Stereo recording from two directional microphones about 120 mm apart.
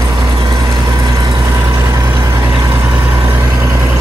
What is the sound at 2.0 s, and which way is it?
Vehicle, 30° right (ahead or behind).